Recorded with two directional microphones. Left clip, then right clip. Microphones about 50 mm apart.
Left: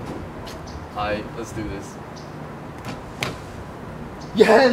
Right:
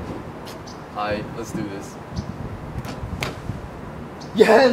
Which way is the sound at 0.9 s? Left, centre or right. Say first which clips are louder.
Even; centre.